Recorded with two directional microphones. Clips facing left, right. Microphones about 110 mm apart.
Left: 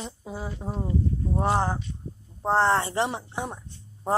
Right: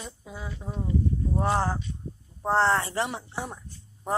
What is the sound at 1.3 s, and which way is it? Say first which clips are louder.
Speech: left 2 dB; 20° left (ahead or behind).